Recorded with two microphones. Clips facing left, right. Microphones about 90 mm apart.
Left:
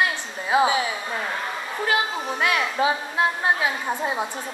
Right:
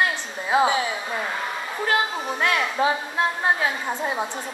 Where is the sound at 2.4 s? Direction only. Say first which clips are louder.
Even; 10° left (ahead or behind).